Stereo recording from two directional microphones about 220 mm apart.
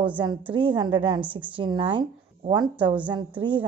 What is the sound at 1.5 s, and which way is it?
A woman's voice, 20° right (ahead or behind).